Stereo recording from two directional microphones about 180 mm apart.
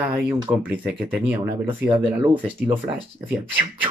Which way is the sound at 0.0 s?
10° right (ahead or behind).